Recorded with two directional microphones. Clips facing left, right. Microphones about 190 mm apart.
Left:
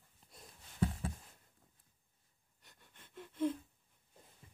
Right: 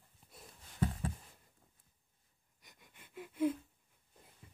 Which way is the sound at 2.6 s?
10° right (ahead or behind).